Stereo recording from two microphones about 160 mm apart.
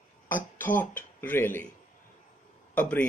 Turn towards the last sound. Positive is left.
turn(degrees=10)  # may be behind; listen again after turning